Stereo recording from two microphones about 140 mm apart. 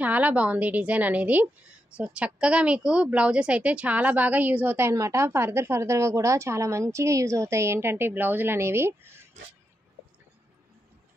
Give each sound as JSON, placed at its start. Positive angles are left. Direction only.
{"t": 0.0, "sound": "a woman's voice", "side_deg": -10}